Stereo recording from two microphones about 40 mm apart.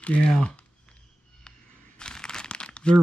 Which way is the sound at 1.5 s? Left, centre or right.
Left.